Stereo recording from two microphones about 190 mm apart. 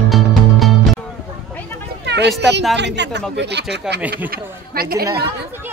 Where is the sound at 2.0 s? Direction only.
65° right (ahead or behind).